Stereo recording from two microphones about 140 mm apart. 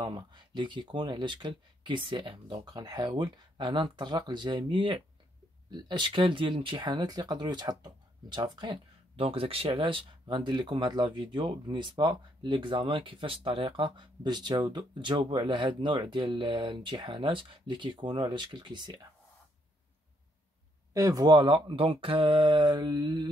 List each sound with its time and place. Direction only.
0.0 s speech: 30° right (ahead or behind)
9.1 s speech: 45° right (ahead or behind)
20.9 s speech: 25° right (ahead or behind)